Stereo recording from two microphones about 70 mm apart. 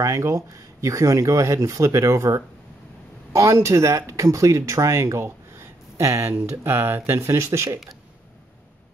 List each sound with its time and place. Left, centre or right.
0.0 s speech: right